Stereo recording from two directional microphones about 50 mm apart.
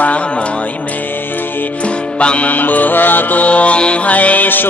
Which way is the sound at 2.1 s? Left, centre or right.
Left.